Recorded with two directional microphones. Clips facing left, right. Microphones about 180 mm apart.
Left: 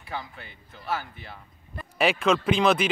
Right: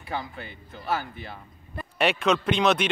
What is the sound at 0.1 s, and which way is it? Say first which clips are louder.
Speech: right 3 dB; 35° right (ahead or behind).